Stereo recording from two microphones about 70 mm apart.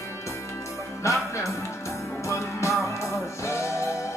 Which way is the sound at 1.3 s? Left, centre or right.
Left.